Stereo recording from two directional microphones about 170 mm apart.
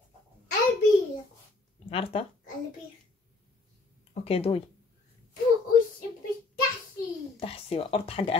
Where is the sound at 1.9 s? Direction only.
35° left (ahead or behind).